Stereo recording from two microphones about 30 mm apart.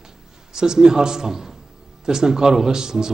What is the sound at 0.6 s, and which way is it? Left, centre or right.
A man's voice, right.